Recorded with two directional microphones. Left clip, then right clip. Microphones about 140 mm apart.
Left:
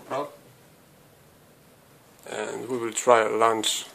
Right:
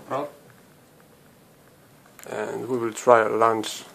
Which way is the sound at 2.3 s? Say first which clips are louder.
Right 3 dB; centre (ahead or behind).